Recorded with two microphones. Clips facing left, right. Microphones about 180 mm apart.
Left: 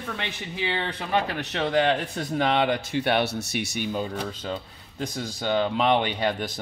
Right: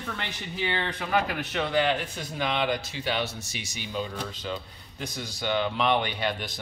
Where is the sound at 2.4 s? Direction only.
55° left (ahead or behind).